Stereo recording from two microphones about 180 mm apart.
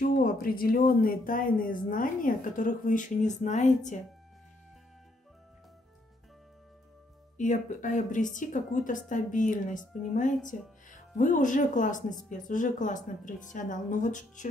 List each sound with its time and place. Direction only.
0.0 s speech: 55° left (ahead or behind)
7.3 s speech: 45° left (ahead or behind)